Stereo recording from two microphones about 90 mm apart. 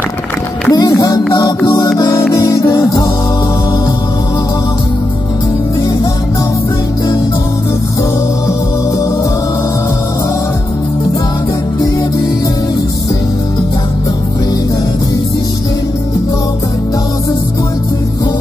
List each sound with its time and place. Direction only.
0.7 s music: 45° left (ahead or behind)